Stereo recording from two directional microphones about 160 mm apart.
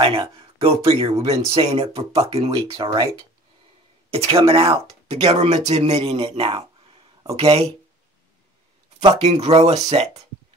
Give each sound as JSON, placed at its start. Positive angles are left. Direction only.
{"t": 0.0, "sound": "speech", "side_deg": -35}
{"t": 9.2, "sound": "speech", "side_deg": -40}